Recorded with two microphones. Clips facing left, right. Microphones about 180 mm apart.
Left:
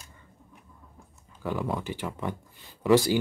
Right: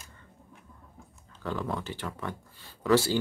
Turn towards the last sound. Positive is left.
turn(degrees=15)  # may be behind; listen again after turning